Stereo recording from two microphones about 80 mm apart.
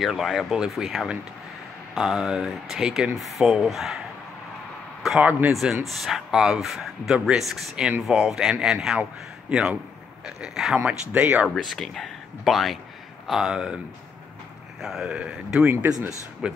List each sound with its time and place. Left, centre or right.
0.0 s speech: centre
5.5 s speech: centre
10.8 s speech: right
11.4 s speech: centre
14.8 s speech: centre